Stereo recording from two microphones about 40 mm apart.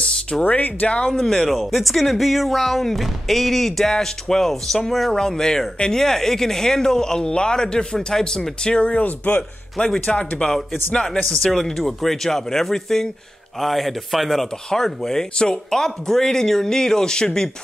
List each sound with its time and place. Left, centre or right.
0.3 s speech: left
0.8 s speech: left
1.1 s speech: centre
1.5 s speech: centre
5.1 s speech: centre
9.0 s speech: left
10.0 s speech: left
11.7 s speech: centre
14.7 s speech: centre